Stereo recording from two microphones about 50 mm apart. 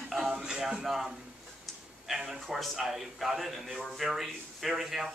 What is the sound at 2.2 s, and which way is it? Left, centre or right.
A man's voice, centre.